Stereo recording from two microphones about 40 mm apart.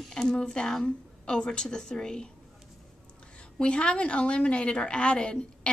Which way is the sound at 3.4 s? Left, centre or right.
Left.